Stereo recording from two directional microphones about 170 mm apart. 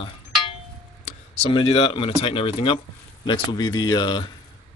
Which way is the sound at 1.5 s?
30° left (ahead or behind).